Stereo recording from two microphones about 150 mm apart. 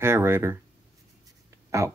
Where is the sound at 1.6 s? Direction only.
20° right (ahead or behind).